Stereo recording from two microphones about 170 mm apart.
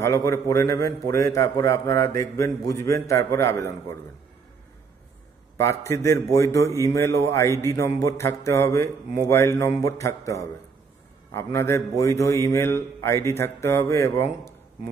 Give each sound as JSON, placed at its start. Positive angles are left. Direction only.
{"t": 0.0, "sound": "a man's voice", "side_deg": 20}
{"t": 5.6, "sound": "a man's voice", "side_deg": 15}